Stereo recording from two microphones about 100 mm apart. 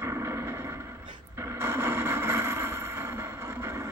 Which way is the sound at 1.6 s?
25° right (ahead or behind).